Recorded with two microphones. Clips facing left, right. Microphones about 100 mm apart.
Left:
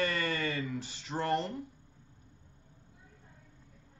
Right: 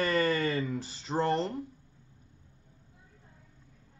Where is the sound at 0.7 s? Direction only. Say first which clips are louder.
Right 4 dB; 35° right (ahead or behind).